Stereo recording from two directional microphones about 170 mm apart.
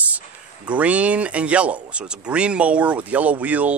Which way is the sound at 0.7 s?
10° right (ahead or behind).